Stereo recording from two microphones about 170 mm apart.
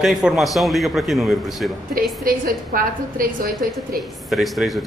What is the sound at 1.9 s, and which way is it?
A woman's voice, 55° right (ahead or behind).